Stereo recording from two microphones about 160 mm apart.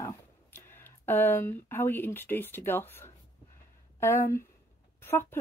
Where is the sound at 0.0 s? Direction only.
15° left (ahead or behind).